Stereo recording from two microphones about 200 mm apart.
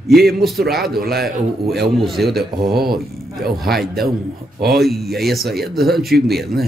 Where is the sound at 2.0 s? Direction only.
Centre (ahead or behind).